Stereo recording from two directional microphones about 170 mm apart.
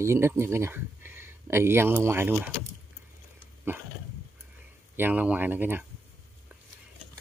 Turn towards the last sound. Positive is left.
turn(degrees=-10)  # may be behind; listen again after turning